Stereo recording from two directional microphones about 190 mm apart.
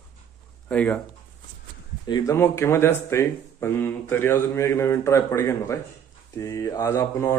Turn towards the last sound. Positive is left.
turn(degrees=15)  # may be behind; listen again after turning